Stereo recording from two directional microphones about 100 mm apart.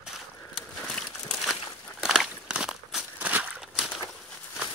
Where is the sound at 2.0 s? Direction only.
5° right (ahead or behind).